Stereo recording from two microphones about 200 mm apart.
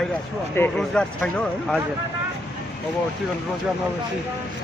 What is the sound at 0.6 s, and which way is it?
Speech, 5° left (ahead or behind).